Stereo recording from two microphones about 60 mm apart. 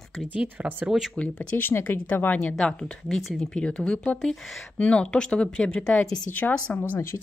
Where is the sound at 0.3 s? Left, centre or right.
Right.